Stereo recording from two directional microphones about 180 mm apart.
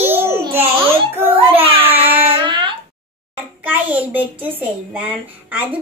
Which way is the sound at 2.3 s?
25° right (ahead or behind).